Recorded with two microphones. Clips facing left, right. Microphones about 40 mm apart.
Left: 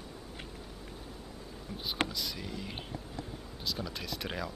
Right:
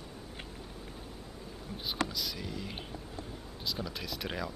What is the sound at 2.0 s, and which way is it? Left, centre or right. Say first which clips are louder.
Speech: even; centre.